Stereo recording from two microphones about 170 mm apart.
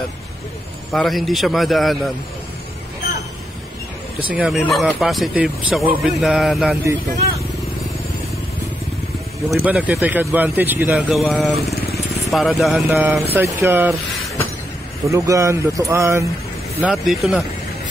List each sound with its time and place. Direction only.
0.9 s speech: centre (ahead or behind)
4.3 s speech: 5° right (ahead or behind)
9.5 s speech: 10° right (ahead or behind)
12.8 s speech: 15° right (ahead or behind)
15.0 s speech: 20° right (ahead or behind)
16.8 s speech: centre (ahead or behind)